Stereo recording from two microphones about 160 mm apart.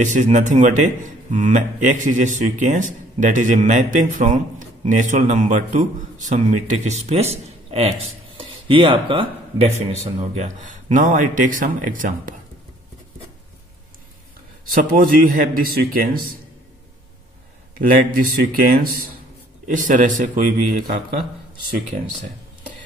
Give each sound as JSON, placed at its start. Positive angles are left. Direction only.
{"t": 0.0, "sound": "a man's voice", "side_deg": -50}
{"t": 10.3, "sound": "speech", "side_deg": -50}
{"t": 14.7, "sound": "speech", "side_deg": -60}
{"t": 17.7, "sound": "speech", "side_deg": -60}